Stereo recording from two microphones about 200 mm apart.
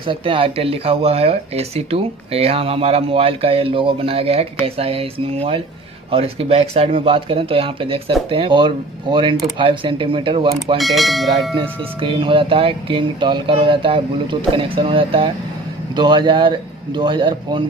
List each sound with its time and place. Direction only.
0.0 s speech: 25° right (ahead or behind)
10.8 s speech: centre (ahead or behind)
11.5 s speech: 25° right (ahead or behind)